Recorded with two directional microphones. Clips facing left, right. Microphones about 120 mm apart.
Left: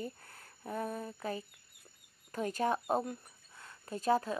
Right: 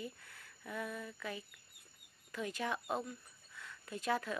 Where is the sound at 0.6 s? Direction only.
40° left (ahead or behind).